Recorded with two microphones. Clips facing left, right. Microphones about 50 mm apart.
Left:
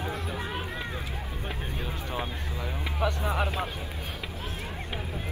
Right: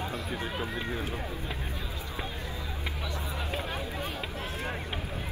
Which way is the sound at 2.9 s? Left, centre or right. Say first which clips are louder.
Left 13 dB; left.